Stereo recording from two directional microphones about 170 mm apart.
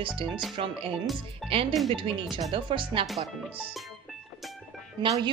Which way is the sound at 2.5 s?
30° right (ahead or behind).